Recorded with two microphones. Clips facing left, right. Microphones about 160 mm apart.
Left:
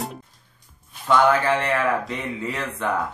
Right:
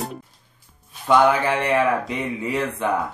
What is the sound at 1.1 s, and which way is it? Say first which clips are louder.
Speech: right 1 dB; 15° right (ahead or behind).